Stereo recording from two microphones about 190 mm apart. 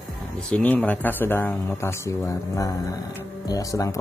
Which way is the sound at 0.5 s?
5° left (ahead or behind).